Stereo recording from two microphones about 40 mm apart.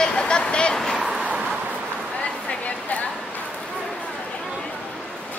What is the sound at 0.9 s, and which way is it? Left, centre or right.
Vehicle, centre.